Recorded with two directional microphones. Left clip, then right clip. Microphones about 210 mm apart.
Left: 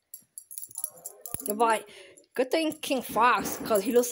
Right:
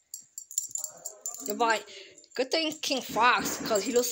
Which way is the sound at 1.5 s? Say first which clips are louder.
Left 2 dB; 25° left (ahead or behind).